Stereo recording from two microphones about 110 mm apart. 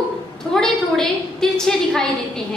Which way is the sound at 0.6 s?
5° left (ahead or behind).